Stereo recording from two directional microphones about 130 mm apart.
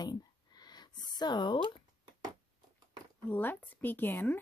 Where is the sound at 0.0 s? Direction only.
30° left (ahead or behind).